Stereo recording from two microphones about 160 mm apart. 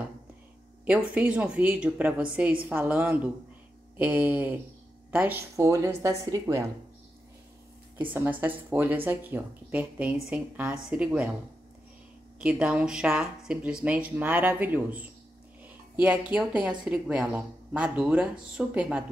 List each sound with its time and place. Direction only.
0.8 s speech: 10° right (ahead or behind)
8.0 s speech: 10° right (ahead or behind)
12.4 s speech: 5° right (ahead or behind)